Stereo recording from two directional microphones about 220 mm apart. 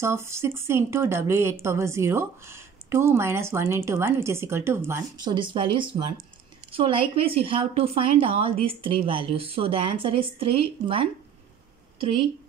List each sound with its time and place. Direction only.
0.0 s a woman's voice: 10° right (ahead or behind)